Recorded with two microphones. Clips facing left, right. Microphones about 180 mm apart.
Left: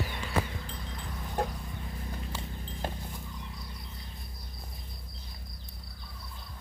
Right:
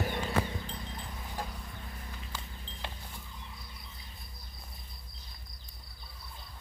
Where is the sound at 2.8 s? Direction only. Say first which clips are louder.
Left 7 dB; 45° left (ahead or behind).